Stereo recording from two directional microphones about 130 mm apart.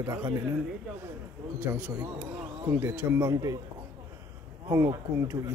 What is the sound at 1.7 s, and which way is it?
Speech, 10° right (ahead or behind).